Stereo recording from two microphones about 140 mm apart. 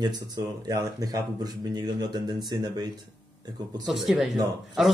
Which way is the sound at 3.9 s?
Centre (ahead or behind).